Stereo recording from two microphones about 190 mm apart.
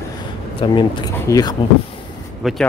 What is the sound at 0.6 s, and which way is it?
Speech, 25° left (ahead or behind).